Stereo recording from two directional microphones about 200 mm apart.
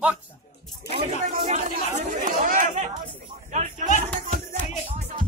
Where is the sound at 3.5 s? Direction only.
35° right (ahead or behind).